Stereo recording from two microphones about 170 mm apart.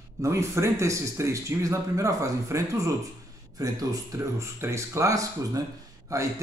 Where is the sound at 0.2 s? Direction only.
15° right (ahead or behind).